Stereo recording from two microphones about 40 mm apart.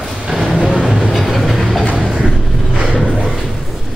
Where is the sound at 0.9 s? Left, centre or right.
Centre.